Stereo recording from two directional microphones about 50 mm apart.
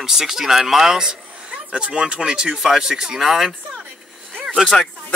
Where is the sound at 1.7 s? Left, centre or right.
Right; by 3.5 s centre.